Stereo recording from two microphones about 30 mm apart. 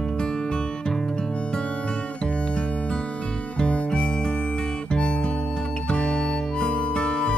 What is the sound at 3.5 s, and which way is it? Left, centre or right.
Music, left.